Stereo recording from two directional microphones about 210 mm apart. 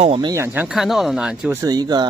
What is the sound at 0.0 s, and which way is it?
Speech, 25° right (ahead or behind).